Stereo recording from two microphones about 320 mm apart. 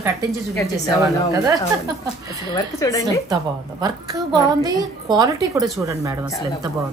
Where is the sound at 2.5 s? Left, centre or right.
Centre.